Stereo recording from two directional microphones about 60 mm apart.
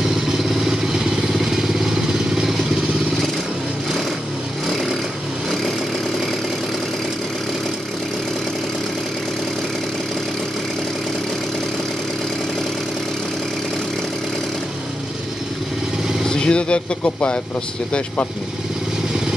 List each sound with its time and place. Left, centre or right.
0.7 s vehicle: centre
16.3 s vehicle: centre